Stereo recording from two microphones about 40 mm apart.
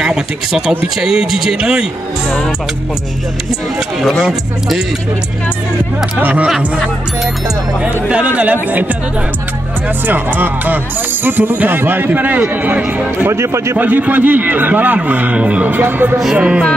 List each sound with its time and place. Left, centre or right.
0.0 s speech: centre
4.0 s speech: centre
6.1 s a man's voice: right
7.8 s speech: right
10.0 s a man's voice: right
12.1 s a man's voice: right
15.3 s speech: right
15.7 s a man's voice: right
16.3 s music: right